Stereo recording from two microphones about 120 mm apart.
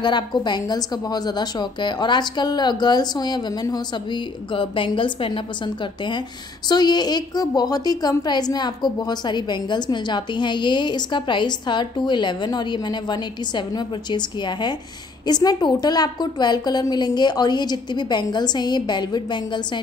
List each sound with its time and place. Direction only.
0.0 s a woman's voice: 40° left (ahead or behind)
6.7 s a woman's voice: 35° left (ahead or behind)